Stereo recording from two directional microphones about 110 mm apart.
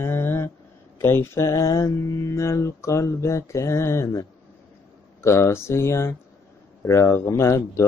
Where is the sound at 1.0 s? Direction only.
20° left (ahead or behind).